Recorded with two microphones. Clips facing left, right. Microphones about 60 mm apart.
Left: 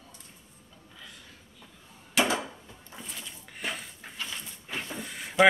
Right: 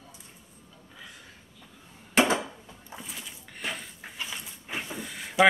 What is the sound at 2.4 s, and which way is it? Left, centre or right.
Dishes, centre.